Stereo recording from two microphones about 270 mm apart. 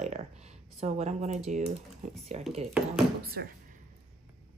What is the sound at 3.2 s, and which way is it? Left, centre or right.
Speech, right.